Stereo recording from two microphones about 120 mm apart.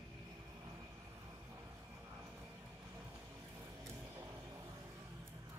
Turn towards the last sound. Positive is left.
turn(degrees=-20)  # may be behind; listen again after turning